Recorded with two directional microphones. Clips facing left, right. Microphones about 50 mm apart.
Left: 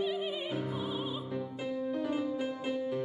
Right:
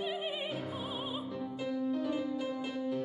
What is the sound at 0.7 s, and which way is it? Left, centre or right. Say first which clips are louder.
Music: left 3 dB; centre.